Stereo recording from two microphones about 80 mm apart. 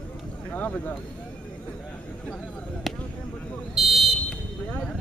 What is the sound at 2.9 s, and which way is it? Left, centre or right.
Speech, centre.